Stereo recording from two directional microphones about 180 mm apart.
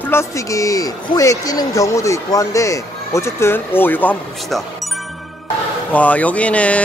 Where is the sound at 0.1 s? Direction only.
15° left (ahead or behind).